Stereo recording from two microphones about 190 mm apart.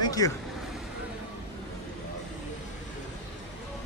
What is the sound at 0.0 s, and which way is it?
Vehicle, 20° left (ahead or behind).